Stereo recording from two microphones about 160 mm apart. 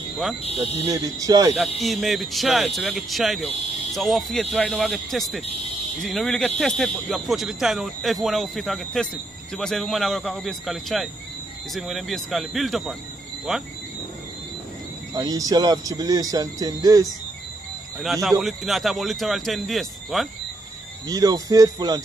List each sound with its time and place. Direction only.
0.8 s speech: 20° right (ahead or behind)
1.8 s speech: centre (ahead or behind)
15.1 s speech: 25° right (ahead or behind)
18.0 s speech: centre (ahead or behind)
21.1 s speech: 25° right (ahead or behind)